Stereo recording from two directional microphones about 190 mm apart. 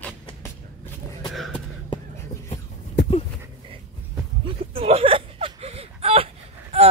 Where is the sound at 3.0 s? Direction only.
60° left (ahead or behind).